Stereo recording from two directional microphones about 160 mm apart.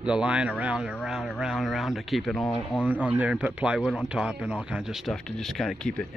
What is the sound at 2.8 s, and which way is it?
Speech, 10° right (ahead or behind).